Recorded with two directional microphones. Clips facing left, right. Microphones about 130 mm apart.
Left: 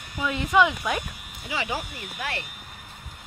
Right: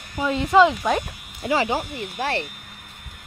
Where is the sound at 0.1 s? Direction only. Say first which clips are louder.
Right 5 dB; 30° right (ahead or behind).